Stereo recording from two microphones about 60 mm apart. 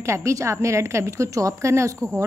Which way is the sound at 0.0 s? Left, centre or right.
Right.